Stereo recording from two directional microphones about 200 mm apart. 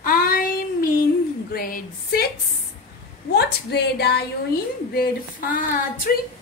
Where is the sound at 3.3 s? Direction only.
55° left (ahead or behind).